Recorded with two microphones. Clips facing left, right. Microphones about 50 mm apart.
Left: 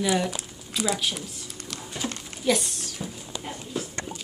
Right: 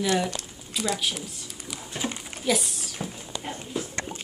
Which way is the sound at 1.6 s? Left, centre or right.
Centre.